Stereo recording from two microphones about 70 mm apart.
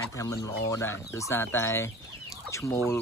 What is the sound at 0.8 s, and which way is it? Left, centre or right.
Speech, left.